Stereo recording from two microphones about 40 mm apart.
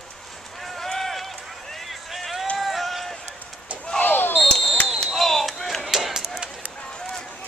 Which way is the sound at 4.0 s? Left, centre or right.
Left.